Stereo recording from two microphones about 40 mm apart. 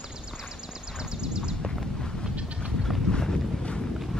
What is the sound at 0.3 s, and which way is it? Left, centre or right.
Horse, centre.